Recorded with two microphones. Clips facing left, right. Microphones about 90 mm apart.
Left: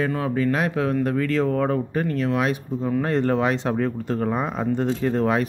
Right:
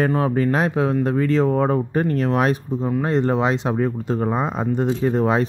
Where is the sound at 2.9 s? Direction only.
15° right (ahead or behind).